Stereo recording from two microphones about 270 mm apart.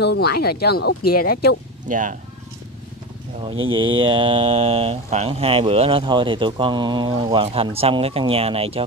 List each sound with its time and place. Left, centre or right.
0.0 s speech: left
1.9 s speech: right
3.5 s speech: right
4.0 s speech: centre